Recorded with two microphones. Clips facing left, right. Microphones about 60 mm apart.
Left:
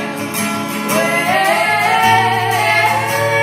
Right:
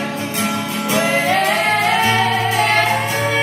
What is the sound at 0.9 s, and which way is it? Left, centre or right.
Music, left.